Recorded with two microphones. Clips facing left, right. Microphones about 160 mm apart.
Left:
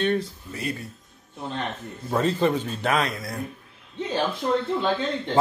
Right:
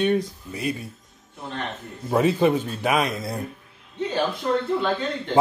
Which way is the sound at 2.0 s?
10° right (ahead or behind).